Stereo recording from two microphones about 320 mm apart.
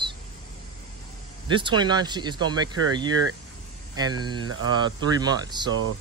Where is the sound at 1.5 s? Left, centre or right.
Centre.